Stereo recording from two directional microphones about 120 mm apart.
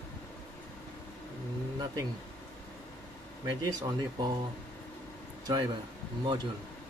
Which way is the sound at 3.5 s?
30° right (ahead or behind).